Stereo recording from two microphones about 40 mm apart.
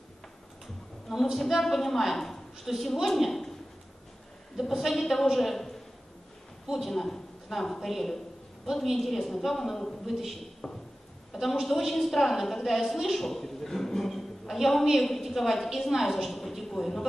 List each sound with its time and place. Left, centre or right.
1.1 s a woman's voice: centre
4.6 s a woman's voice: centre
6.9 s a woman's voice: centre
10.6 s a sound: centre
11.4 s a woman's voice: centre